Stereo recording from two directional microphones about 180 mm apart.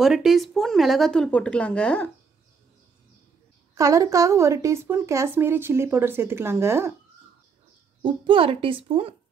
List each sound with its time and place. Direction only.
0.0 s speech: centre (ahead or behind)
3.7 s a woman's voice: 20° right (ahead or behind)
8.0 s a woman's voice: 30° right (ahead or behind)